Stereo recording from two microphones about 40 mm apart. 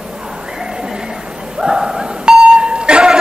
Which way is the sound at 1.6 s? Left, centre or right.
Centre.